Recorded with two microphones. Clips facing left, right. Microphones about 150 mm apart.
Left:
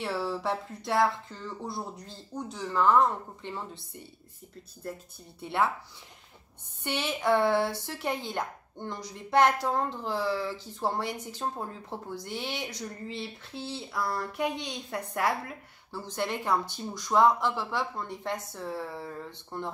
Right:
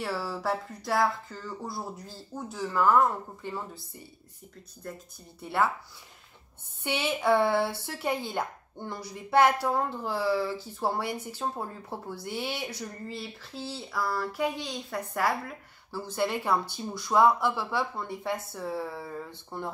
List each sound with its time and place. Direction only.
0.0 s speech: centre (ahead or behind)
5.4 s speech: centre (ahead or behind)
6.8 s speech: 10° right (ahead or behind)
15.9 s speech: 10° right (ahead or behind)